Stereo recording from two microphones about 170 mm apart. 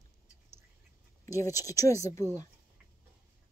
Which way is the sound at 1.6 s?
20° left (ahead or behind).